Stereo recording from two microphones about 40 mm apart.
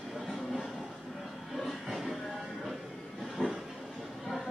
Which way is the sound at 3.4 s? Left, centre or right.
Right.